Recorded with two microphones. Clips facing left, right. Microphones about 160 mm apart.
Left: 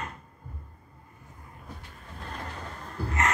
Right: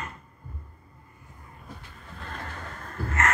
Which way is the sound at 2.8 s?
20° left (ahead or behind).